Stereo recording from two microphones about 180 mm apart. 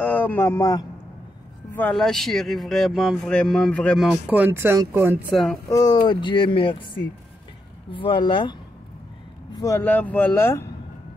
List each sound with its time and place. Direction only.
0.0 s speech: 10° left (ahead or behind)
1.8 s speech: 5° left (ahead or behind); by 5.2 s 15° right (ahead or behind)
5.3 s speech: centre (ahead or behind)
5.7 s speech: 20° left (ahead or behind)